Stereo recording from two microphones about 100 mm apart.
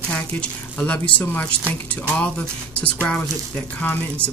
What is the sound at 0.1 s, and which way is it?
Speech, 10° left (ahead or behind).